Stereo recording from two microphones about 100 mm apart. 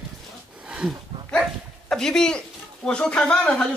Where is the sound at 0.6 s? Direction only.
10° right (ahead or behind).